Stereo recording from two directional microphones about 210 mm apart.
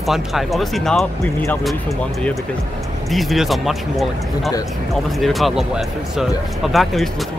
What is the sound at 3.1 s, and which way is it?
Speech, centre (ahead or behind).